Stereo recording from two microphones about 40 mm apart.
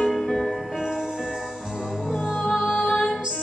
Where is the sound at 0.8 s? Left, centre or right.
Centre.